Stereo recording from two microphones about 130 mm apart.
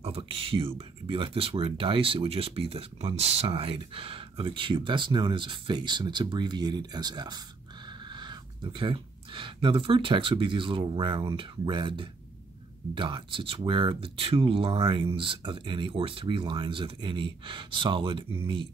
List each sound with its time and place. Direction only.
0.0 s speech: 50° right (ahead or behind)